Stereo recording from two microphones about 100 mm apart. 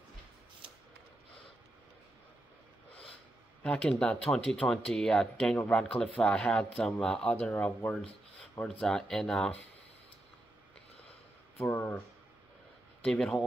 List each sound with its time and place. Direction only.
3.6 s speech: 10° left (ahead or behind)
11.5 s speech: 20° left (ahead or behind)
13.0 s speech: 10° left (ahead or behind)